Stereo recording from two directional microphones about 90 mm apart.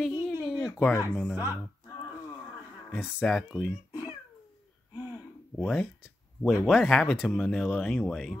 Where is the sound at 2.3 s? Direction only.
20° left (ahead or behind).